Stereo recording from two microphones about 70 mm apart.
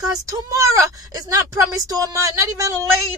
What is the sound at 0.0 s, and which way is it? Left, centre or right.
A woman's voice, right.